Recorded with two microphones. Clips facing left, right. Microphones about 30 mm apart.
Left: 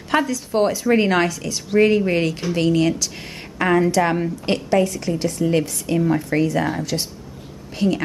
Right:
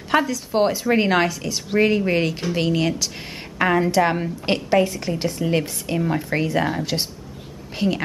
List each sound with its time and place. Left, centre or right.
0.1 s a woman's voice: centre